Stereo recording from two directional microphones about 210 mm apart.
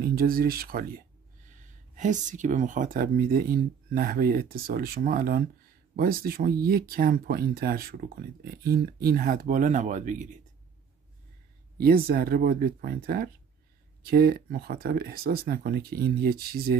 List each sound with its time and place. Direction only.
0.0 s speech: 45° right (ahead or behind)
11.8 s speech: 45° right (ahead or behind)